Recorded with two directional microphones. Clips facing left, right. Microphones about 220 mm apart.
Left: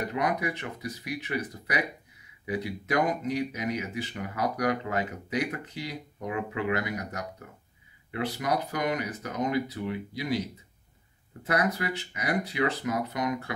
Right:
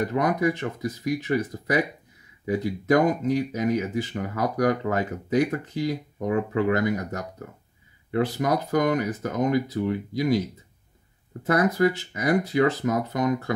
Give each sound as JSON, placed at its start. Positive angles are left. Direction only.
{"t": 0.1, "sound": "speech", "side_deg": -45}
{"t": 11.4, "sound": "speech", "side_deg": -45}